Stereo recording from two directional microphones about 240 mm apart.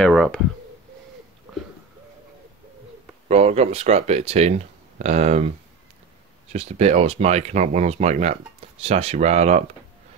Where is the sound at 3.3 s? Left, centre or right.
Right.